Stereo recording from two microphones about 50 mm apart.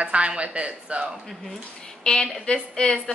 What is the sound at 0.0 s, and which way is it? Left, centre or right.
Speech, right.